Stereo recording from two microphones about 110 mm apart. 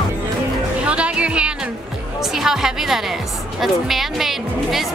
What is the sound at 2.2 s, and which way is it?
A woman's voice, 5° right (ahead or behind).